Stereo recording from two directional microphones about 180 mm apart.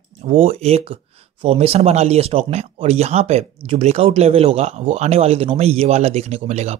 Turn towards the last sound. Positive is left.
turn(degrees=-35)  # may be behind; listen again after turning